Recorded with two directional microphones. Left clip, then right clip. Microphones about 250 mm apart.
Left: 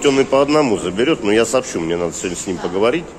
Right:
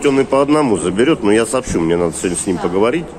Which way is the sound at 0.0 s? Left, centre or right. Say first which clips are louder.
Even; centre.